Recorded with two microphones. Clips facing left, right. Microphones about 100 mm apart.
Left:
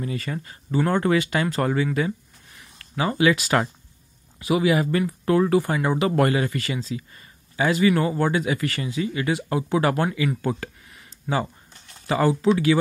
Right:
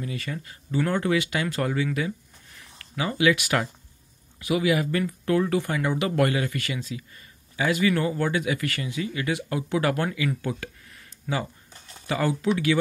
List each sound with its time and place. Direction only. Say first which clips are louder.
0.0 s speech: left 4 dB; 35° left (ahead or behind)
11.3 s speech: left 4 dB; 20° left (ahead or behind)